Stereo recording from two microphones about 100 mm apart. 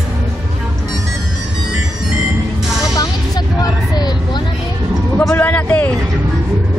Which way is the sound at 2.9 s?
40° left (ahead or behind).